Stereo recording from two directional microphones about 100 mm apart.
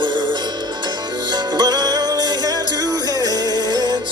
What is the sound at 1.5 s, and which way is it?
Music, 40° right (ahead or behind).